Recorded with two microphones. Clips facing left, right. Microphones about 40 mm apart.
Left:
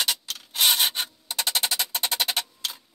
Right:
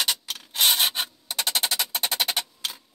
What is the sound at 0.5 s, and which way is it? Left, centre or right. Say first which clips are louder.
Rub: even; centre.